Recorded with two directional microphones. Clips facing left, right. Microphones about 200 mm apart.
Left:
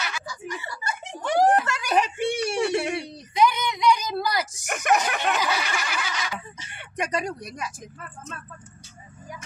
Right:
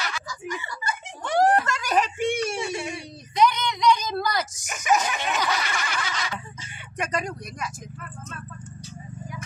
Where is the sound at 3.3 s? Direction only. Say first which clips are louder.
Even; 10° left (ahead or behind).